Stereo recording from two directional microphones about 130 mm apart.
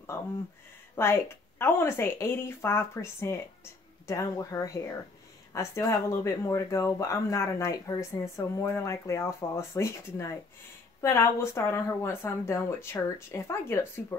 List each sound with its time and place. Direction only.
0.9 s speech: 20° left (ahead or behind)